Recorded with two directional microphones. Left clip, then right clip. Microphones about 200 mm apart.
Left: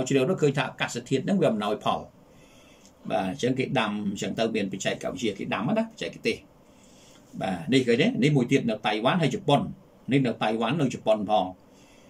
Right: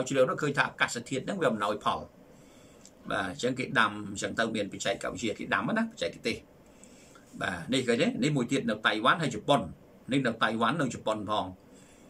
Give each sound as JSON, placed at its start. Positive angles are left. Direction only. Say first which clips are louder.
{"t": 0.0, "sound": "speech", "louder": "left 3 dB", "side_deg": 15}
{"t": 3.7, "sound": "speech", "louder": "even", "side_deg": 15}
{"t": 7.3, "sound": "speech", "louder": "left 5 dB", "side_deg": 15}